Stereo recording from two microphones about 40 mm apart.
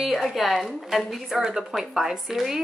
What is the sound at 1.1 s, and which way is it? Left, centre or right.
A woman's voice, centre.